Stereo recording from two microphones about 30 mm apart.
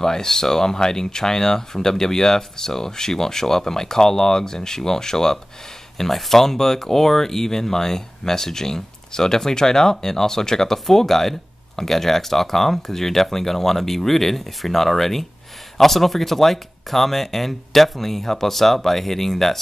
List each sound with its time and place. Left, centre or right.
0.0 s speech: centre
5.9 s speech: centre